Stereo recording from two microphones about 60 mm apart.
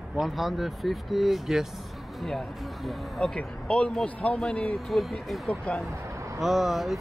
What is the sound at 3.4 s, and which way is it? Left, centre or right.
Speech, left.